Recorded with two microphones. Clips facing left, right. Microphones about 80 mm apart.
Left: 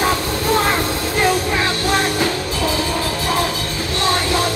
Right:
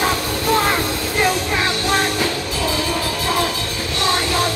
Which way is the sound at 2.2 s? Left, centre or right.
Left.